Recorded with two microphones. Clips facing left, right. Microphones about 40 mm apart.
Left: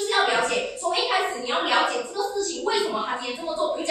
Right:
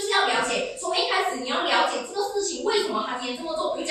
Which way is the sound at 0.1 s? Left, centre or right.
Centre.